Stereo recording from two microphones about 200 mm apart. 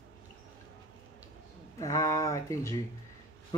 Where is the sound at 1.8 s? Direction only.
15° left (ahead or behind).